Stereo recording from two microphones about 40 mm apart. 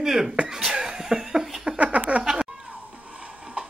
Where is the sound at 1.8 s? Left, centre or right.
Right.